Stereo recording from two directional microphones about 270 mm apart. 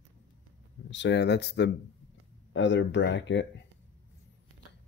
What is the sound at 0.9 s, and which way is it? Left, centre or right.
Speech, left.